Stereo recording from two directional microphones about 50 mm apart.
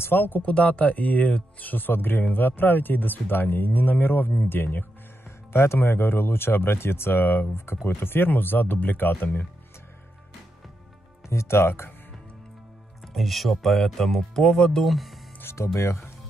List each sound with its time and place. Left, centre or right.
0.0 s speech: left
0.5 s speech: left
5.5 s speech: left
5.8 s speech: left
11.2 s speech: left
13.0 s speech: centre
15.5 s speech: left